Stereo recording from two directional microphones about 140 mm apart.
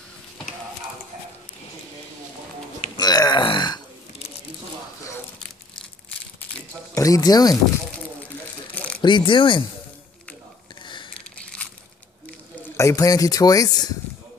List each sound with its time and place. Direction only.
3.0 s burping: 30° left (ahead or behind)
7.0 s speech: 25° left (ahead or behind)
8.7 s a sound: 10° left (ahead or behind)
9.0 s speech: 35° left (ahead or behind)
11.1 s a sound: 10° left (ahead or behind)
12.7 s speech: 25° left (ahead or behind)